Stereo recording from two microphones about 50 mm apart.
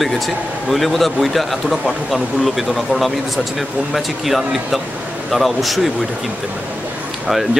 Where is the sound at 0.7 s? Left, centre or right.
Centre.